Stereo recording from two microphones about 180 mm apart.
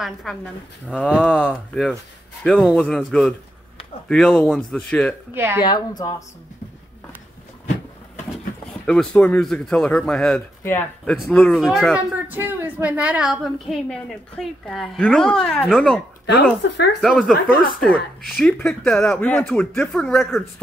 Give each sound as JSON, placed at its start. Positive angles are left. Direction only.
{"t": 0.0, "sound": "speech", "side_deg": 0}
{"t": 5.3, "sound": "speech", "side_deg": -15}
{"t": 5.6, "sound": "a woman's voice", "side_deg": 25}
{"t": 8.8, "sound": "speech", "side_deg": 5}
{"t": 11.1, "sound": "speech", "side_deg": 0}
{"t": 16.6, "sound": "speech", "side_deg": 70}
{"t": 17.0, "sound": "speech", "side_deg": 0}